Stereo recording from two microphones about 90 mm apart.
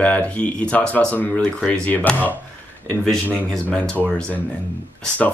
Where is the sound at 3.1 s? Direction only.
5° left (ahead or behind).